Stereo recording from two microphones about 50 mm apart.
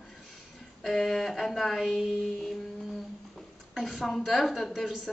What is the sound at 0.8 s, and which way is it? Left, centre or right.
A woman's voice, centre.